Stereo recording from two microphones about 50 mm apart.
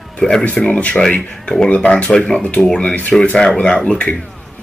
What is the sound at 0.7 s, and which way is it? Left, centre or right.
Speech, left.